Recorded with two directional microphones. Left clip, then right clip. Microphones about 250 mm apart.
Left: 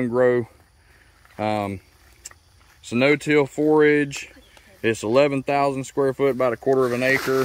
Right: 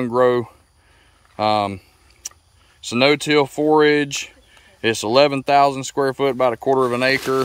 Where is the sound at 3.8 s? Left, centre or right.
Right.